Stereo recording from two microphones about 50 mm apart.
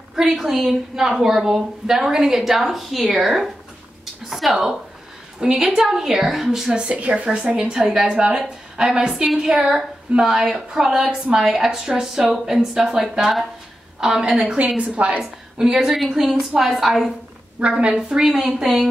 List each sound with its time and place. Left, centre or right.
0.1 s a woman's voice: centre
4.0 s a sound: centre
5.4 s speech: centre
6.8 s a woman's voice: right
7.2 s speech: centre
14.6 s a woman's voice: right
15.5 s a woman's voice: centre
17.6 s speech: centre